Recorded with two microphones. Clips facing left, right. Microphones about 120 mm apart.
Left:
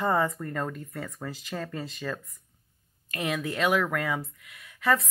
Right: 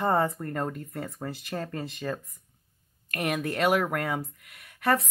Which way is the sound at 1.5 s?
25° right (ahead or behind).